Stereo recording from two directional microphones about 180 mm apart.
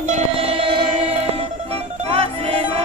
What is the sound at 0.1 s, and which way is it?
Music, 30° right (ahead or behind).